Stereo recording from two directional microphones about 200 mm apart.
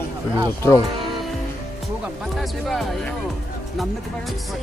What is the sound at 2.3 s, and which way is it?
Speech, centre (ahead or behind).